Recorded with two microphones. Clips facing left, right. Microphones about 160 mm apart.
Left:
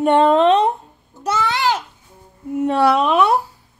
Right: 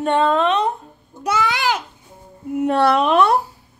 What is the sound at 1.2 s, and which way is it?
Babbling, 10° right (ahead or behind).